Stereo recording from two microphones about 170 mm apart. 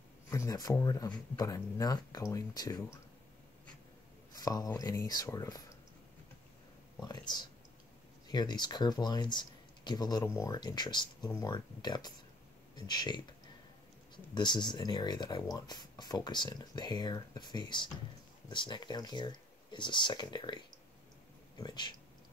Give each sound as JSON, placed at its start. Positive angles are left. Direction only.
{"t": 0.3, "sound": "speech", "side_deg": 20}
{"t": 4.3, "sound": "speech", "side_deg": 20}
{"t": 7.0, "sound": "speech", "side_deg": 25}